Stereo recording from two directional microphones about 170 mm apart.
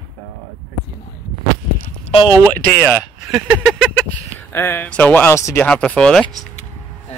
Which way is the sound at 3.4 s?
Centre (ahead or behind).